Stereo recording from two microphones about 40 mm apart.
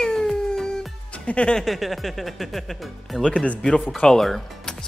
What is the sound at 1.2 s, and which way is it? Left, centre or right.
Speech, left.